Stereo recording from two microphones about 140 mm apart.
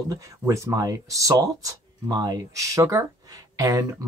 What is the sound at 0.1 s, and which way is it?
Speech, 20° right (ahead or behind).